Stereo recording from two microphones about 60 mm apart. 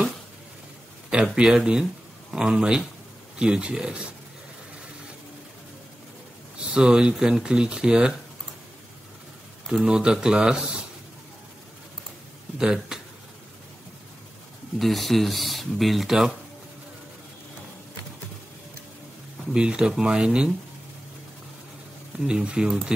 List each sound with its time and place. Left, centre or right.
1.1 s speech: centre
6.7 s speech: centre
9.7 s speech: centre
12.5 s speech: centre
14.8 s speech: centre
19.5 s speech: centre
22.2 s speech: centre